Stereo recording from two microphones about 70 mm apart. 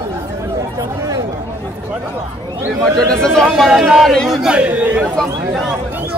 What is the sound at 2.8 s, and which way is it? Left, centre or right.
Speech, centre.